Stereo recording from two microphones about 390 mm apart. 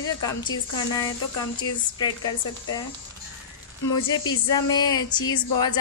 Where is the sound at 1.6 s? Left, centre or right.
Centre.